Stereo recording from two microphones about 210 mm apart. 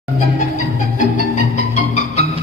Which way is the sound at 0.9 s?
35° left (ahead or behind).